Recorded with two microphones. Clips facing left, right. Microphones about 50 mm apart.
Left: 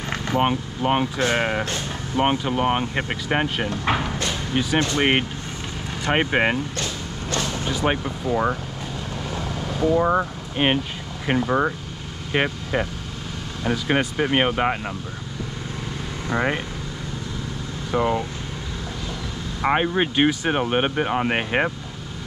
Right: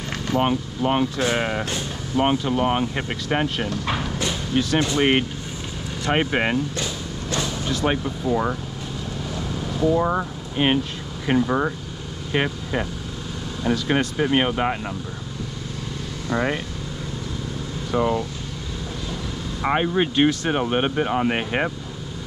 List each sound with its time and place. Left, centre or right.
0.3 s speech: centre
3.7 s speech: left
4.5 s speech: centre
7.6 s speech: centre
9.8 s speech: centre
16.3 s speech: centre
17.9 s speech: centre
19.6 s speech: centre